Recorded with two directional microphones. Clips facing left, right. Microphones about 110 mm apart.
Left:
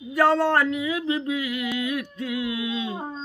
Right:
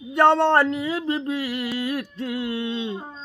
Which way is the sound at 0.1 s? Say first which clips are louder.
Right 3 dB; 25° right (ahead or behind).